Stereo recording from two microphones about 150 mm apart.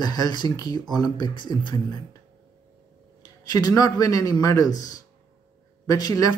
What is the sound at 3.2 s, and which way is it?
Speech, 25° left (ahead or behind).